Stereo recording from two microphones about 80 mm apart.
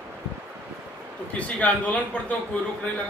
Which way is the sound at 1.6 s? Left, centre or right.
Centre.